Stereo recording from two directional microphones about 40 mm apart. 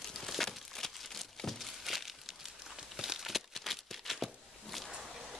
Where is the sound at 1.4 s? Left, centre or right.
Centre.